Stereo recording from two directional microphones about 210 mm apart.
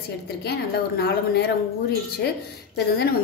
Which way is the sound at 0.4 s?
50° left (ahead or behind).